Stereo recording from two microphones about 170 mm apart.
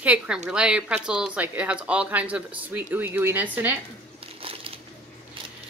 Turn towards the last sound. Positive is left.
turn(degrees=-35)  # may be behind; listen again after turning